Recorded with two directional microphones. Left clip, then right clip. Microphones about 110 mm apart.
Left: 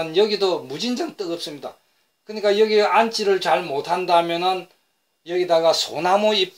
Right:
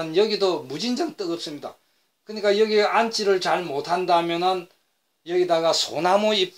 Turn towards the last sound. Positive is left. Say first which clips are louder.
# left 2 dB
turn(degrees=-40)  # may be behind; listen again after turning